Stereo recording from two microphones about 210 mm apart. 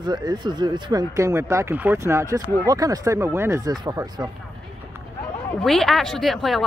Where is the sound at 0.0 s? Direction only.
20° right (ahead or behind).